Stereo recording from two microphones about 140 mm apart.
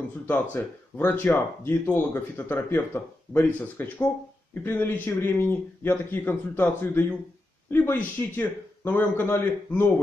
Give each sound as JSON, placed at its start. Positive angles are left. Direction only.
{"t": 0.3, "sound": "speech", "side_deg": 15}